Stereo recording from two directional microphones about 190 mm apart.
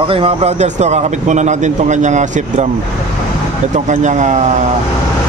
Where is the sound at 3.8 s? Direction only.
40° right (ahead or behind).